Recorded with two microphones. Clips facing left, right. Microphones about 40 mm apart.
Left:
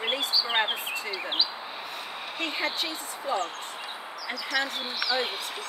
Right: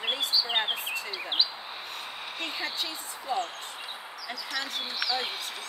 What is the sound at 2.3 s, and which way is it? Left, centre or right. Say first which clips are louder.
Speech: left 4 dB; left.